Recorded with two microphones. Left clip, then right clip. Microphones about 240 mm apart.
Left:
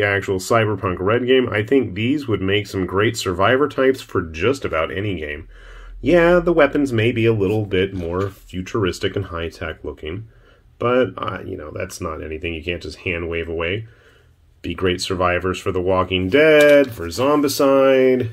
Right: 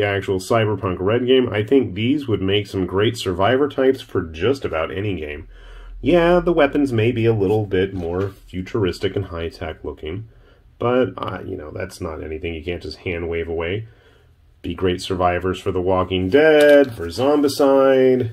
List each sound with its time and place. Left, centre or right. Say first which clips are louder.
0.0 s speech: left 1 dB; centre
15.0 s speech: right 1 dB; centre